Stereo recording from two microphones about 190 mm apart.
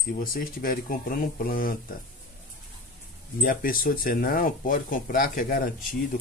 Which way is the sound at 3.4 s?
50° left (ahead or behind).